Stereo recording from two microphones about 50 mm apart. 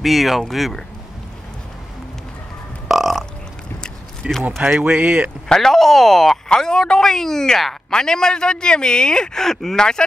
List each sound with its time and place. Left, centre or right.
0.0 s speech: centre
2.9 s burping: centre
4.4 s speech: right
4.6 s speech: centre
5.5 s speech: centre